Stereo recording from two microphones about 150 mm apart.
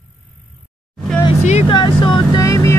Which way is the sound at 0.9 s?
5° left (ahead or behind).